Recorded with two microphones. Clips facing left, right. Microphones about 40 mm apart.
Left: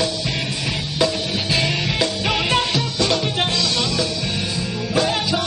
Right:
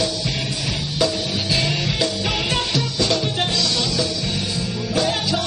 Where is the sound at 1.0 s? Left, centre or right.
Centre.